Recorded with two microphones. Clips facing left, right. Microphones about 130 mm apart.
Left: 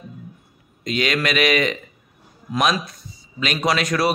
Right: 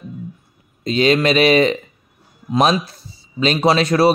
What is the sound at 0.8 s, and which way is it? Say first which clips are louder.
A man's voice: right 7 dB; 30° right (ahead or behind).